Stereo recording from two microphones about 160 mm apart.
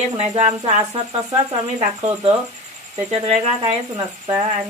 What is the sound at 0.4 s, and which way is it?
Speech, 40° right (ahead or behind).